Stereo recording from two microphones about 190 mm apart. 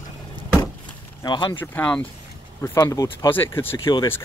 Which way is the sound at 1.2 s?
25° left (ahead or behind).